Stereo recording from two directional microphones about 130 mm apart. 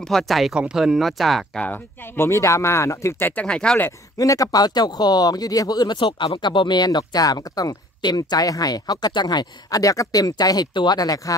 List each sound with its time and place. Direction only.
0.1 s speech: centre (ahead or behind)
4.2 s speech: 25° left (ahead or behind)